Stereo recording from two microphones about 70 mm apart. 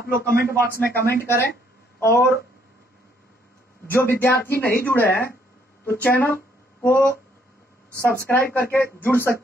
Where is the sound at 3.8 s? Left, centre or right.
Left.